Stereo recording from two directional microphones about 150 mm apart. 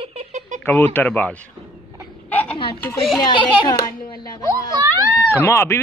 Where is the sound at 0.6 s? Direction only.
15° left (ahead or behind).